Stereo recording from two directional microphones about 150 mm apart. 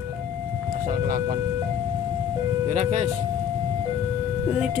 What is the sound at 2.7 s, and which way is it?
Ice cream truck, 45° right (ahead or behind).